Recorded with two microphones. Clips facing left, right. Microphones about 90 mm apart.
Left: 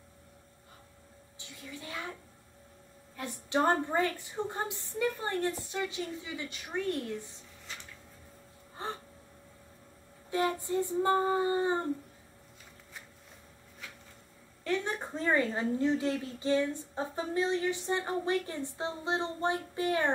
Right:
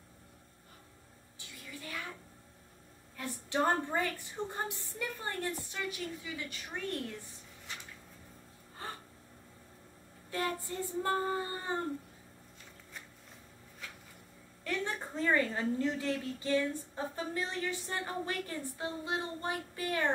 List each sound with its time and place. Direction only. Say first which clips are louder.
1.4 s a sound: left 2 dB; 20° left (ahead or behind)
3.2 s a woman's voice: left 3 dB; 20° left (ahead or behind)
8.8 s gasp: left 5 dB; 20° left (ahead or behind)
10.3 s a woman's voice: left 6 dB; 20° left (ahead or behind)
14.7 s a woman's voice: left 4 dB; 20° left (ahead or behind)